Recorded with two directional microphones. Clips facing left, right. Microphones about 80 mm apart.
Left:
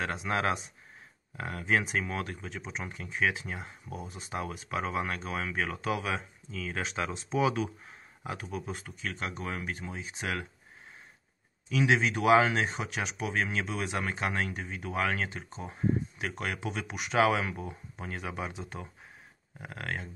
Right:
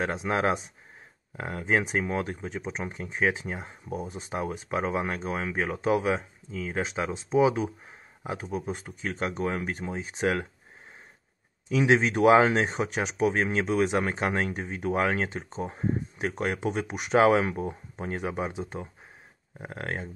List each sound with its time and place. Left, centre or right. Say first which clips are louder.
0.0 s speech: right 4 dB; right
11.7 s speech: right 4 dB; right